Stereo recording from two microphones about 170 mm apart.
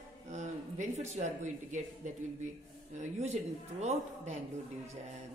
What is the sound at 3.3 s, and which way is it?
A man's voice, 40° right (ahead or behind).